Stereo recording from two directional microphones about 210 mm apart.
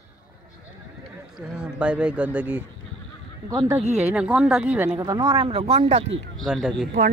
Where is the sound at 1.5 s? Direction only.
5° right (ahead or behind).